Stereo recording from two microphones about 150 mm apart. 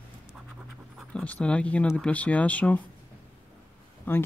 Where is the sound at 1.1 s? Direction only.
10° left (ahead or behind).